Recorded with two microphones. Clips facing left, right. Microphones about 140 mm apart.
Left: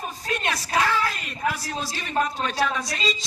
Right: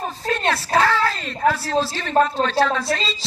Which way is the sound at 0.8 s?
15° left (ahead or behind).